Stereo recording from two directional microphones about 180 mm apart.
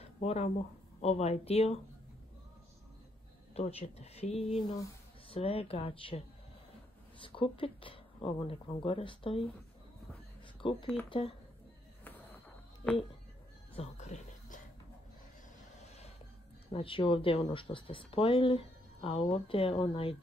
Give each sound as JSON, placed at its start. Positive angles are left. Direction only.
{"t": 0.0, "sound": "a sound", "side_deg": 35}
{"t": 1.0, "sound": "speech", "side_deg": 35}
{"t": 3.5, "sound": "speech", "side_deg": 35}
{"t": 10.6, "sound": "speech", "side_deg": 30}
{"t": 13.7, "sound": "music", "side_deg": 40}
{"t": 16.7, "sound": "speech", "side_deg": 30}